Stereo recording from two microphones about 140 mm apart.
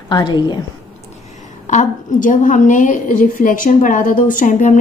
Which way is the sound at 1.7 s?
65° left (ahead or behind).